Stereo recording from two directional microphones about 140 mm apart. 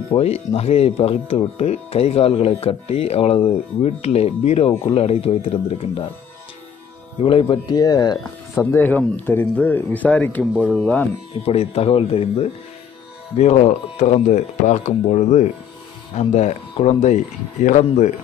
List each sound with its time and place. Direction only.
0.1 s speech: 45° left (ahead or behind)
7.2 s speech: 40° left (ahead or behind)
8.7 s speech: 10° left (ahead or behind)
11.4 s speech: 45° left (ahead or behind)